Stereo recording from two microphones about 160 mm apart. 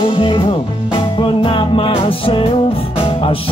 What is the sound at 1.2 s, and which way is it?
Music, 30° left (ahead or behind).